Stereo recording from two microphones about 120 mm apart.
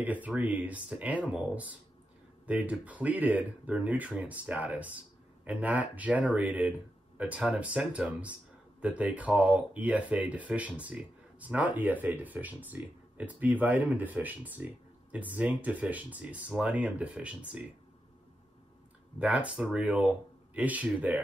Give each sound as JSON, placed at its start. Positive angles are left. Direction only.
{"t": 0.0, "sound": "speech", "side_deg": -15}
{"t": 19.1, "sound": "speech", "side_deg": -10}